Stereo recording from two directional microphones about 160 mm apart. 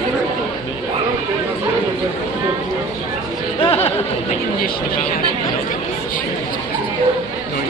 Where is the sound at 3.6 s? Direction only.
35° left (ahead or behind).